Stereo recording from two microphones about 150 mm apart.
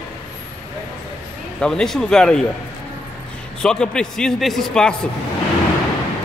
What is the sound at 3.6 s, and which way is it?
A man's voice, 5° left (ahead or behind).